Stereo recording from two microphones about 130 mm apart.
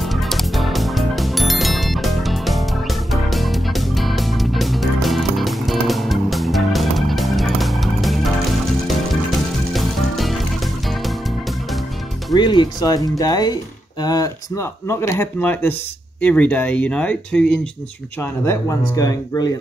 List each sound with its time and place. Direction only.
0.0 s music: centre (ahead or behind)
12.4 s speech: 35° left (ahead or behind); by 17.5 s 10° left (ahead or behind)
18.2 s speech: 20° left (ahead or behind)